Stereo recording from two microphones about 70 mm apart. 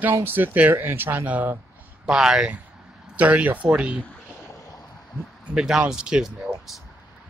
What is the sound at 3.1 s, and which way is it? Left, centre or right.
Speech, right.